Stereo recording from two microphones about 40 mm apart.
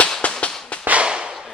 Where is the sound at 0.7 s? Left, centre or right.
Left.